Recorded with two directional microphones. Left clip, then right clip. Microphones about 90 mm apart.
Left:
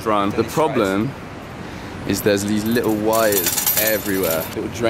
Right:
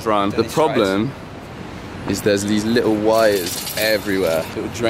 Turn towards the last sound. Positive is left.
turn(degrees=-5)  # may be behind; listen again after turning